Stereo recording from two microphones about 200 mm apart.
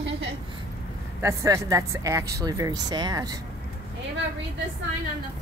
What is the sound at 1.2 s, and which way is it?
A woman's voice, 15° right (ahead or behind).